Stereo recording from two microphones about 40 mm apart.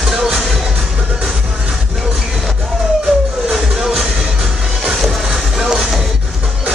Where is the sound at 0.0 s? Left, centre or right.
Centre.